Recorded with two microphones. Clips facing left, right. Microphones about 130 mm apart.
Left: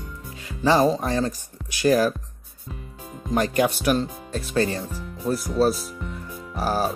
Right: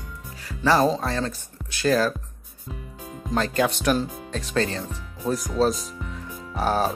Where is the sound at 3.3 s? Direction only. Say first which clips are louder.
Left 2 dB; 15° left (ahead or behind).